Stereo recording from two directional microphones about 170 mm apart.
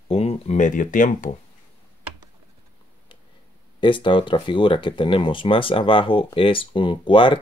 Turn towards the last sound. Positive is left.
turn(degrees=30)  # may be behind; listen again after turning